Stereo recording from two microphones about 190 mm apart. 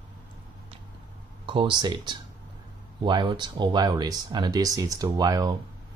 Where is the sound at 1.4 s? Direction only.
25° right (ahead or behind).